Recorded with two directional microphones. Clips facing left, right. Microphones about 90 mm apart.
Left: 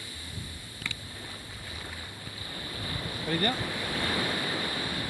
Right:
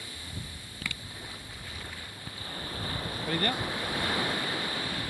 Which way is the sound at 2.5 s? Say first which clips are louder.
Right 1 dB; 35° right (ahead or behind).